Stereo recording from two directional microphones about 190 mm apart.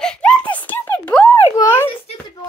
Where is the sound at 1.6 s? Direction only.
15° left (ahead or behind).